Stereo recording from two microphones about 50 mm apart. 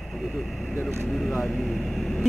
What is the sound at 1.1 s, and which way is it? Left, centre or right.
Speech, centre.